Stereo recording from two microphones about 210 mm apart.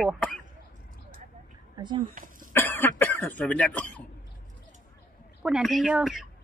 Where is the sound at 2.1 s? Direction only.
40° right (ahead or behind).